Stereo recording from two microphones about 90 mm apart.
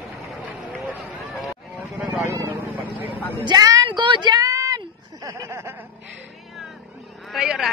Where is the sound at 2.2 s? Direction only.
35° right (ahead or behind).